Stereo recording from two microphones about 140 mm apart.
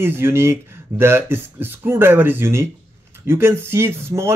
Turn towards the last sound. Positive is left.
turn(degrees=-20)  # may be behind; listen again after turning